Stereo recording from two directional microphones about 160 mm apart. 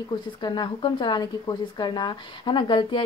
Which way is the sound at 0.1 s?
25° left (ahead or behind).